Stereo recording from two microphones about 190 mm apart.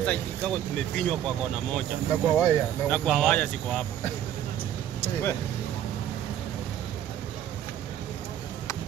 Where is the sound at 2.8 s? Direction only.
5° left (ahead or behind).